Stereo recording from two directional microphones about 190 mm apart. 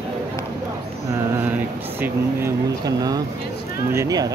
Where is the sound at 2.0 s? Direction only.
15° right (ahead or behind).